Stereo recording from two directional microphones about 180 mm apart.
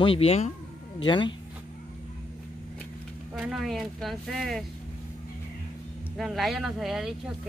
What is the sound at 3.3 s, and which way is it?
Speech, centre (ahead or behind).